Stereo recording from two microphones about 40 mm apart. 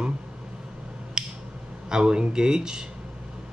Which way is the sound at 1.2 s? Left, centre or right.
Centre.